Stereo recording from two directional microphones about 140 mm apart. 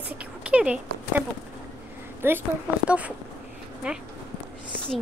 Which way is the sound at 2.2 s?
15° right (ahead or behind).